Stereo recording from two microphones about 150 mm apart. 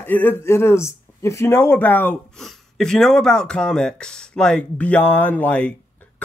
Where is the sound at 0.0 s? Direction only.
15° left (ahead or behind).